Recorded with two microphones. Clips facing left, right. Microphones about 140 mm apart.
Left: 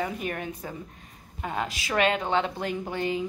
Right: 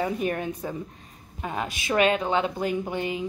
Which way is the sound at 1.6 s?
25° right (ahead or behind).